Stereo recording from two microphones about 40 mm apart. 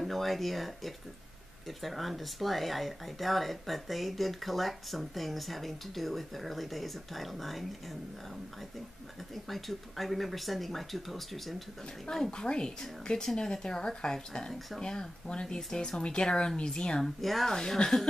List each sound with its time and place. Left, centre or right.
0.0 s speech: centre
9.3 s speech: centre
12.3 s speech: left
17.0 s speech: centre
17.6 s speech: centre